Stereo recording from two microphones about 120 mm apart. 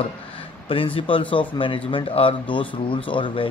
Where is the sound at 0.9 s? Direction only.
45° left (ahead or behind).